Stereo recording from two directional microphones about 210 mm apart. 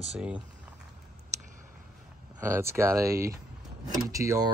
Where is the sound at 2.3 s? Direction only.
10° right (ahead or behind).